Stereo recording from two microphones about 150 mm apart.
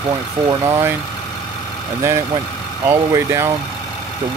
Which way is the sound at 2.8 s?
20° right (ahead or behind).